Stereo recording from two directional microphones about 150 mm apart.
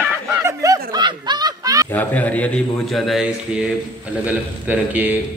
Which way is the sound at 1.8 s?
10° left (ahead or behind).